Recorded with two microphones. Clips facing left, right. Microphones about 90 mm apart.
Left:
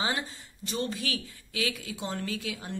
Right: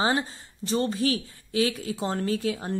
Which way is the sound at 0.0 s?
35° right (ahead or behind).